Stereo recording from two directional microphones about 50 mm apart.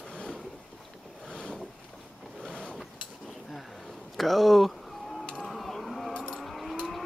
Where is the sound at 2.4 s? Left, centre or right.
Centre.